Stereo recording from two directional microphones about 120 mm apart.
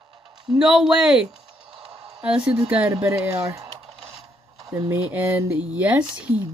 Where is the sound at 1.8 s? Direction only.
10° right (ahead or behind).